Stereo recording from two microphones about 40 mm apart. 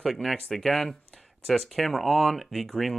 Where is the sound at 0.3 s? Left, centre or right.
Centre.